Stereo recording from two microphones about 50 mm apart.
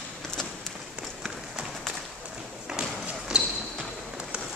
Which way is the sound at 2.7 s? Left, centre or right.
Centre.